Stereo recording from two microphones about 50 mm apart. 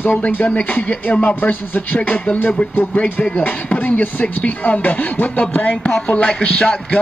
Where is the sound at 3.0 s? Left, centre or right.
Left.